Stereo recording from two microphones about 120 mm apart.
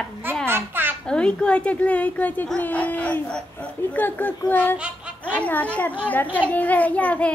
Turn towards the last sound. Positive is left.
turn(degrees=10)  # may be behind; listen again after turning